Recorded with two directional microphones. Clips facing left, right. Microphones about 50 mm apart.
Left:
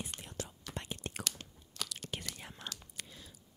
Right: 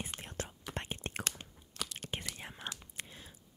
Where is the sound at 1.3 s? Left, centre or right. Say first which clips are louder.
Right 1 dB; right.